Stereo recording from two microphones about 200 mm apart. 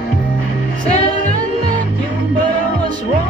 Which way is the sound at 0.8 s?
35° left (ahead or behind).